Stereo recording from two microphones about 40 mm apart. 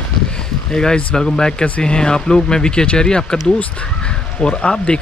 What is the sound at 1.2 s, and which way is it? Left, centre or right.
Speech, centre.